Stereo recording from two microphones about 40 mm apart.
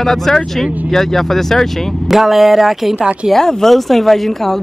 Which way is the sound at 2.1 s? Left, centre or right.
Centre.